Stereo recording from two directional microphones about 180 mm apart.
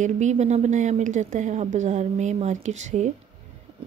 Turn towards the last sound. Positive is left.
turn(degrees=-40)  # may be behind; listen again after turning